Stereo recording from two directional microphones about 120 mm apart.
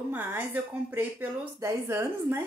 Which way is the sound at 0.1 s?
15° right (ahead or behind).